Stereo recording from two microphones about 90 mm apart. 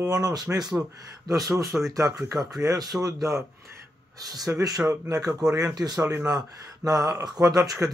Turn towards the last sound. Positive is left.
turn(degrees=-40)  # may be behind; listen again after turning